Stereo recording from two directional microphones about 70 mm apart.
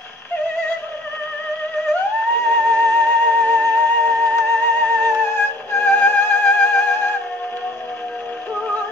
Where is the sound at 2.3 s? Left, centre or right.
Left.